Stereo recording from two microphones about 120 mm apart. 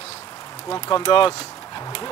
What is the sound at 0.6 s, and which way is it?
Speech, 35° left (ahead or behind).